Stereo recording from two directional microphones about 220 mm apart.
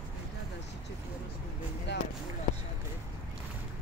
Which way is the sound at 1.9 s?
50° left (ahead or behind).